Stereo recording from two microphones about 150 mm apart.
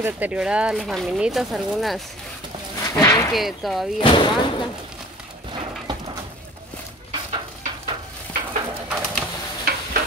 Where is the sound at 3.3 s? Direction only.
Centre (ahead or behind).